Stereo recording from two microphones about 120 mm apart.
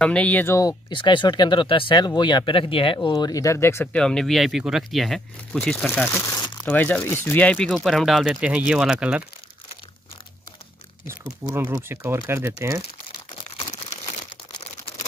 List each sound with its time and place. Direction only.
0.0 s speech: 10° left (ahead or behind)
0.6 s speech: 35° left (ahead or behind)
3.1 s speech: 35° left (ahead or behind)
3.9 s speech: 5° left (ahead or behind)
11.1 s speech: 20° right (ahead or behind)